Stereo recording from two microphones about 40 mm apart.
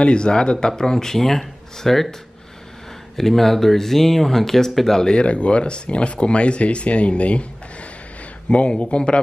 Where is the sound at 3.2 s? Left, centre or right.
Centre.